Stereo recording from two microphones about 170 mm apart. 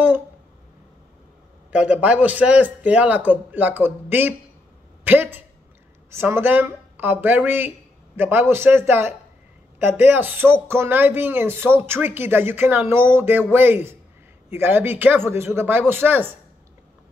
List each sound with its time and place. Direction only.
1.7 s speech: 10° right (ahead or behind)